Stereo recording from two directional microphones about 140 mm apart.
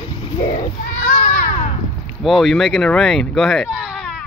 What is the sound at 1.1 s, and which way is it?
Children playing, 60° left (ahead or behind).